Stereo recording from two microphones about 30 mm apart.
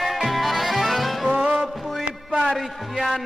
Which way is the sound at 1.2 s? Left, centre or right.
Right.